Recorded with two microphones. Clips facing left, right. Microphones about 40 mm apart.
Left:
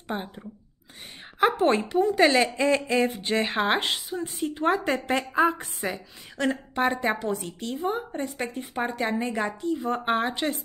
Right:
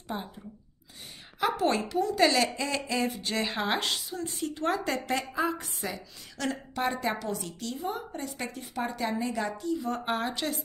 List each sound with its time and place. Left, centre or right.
0.1 s a woman's voice: left